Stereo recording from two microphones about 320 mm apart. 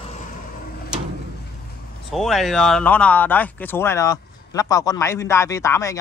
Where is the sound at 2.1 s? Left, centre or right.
Centre.